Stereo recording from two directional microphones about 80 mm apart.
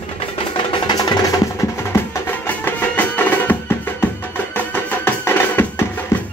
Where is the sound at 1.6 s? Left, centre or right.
Left.